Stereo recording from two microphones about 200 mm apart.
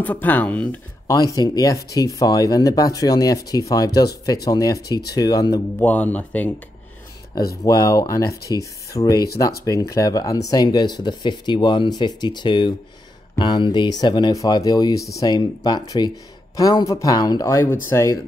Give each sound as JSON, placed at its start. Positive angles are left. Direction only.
{"t": 0.0, "sound": "speech", "side_deg": 10}
{"t": 1.1, "sound": "speech", "side_deg": 20}
{"t": 5.8, "sound": "speech", "side_deg": 10}
{"t": 7.6, "sound": "speech", "side_deg": 15}